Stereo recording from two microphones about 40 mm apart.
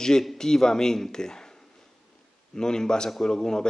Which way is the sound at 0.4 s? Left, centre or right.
Centre.